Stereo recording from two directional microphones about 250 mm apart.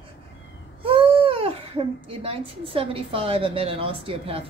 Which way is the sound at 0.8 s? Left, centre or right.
Right.